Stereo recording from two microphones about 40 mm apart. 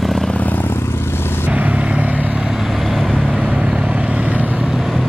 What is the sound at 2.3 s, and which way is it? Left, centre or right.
Vehicle, centre.